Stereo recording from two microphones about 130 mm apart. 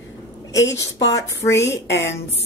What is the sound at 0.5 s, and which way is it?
Speech, 25° left (ahead or behind).